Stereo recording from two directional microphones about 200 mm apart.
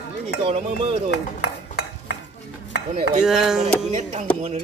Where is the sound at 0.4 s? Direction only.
30° right (ahead or behind).